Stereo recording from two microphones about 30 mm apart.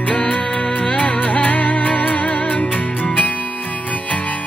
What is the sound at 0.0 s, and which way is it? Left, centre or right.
Music, left.